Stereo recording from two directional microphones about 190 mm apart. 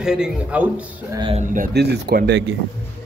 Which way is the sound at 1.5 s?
50° right (ahead or behind).